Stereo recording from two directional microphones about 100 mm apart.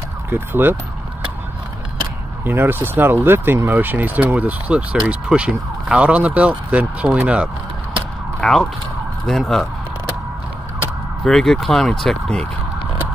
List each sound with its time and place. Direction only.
0.3 s speech: 20° right (ahead or behind)
2.4 s speech: 20° right (ahead or behind)
8.4 s speech: 5° left (ahead or behind)
11.2 s speech: 5° left (ahead or behind)